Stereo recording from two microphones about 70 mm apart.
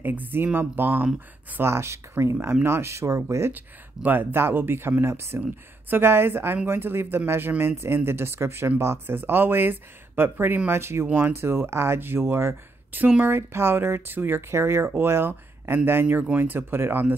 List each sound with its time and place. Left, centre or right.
0.0 s speech: right
3.5 s speech: right
13.0 s speech: right
13.4 s speech: right